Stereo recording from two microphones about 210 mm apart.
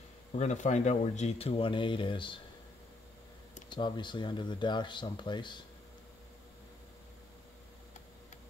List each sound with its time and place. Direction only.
0.3 s speech: 35° left (ahead or behind)
3.7 s speech: 20° left (ahead or behind)